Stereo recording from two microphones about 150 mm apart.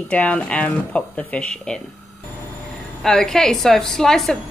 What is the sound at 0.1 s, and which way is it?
Speech, 10° left (ahead or behind).